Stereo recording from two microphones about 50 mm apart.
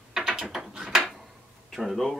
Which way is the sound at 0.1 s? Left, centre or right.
Centre.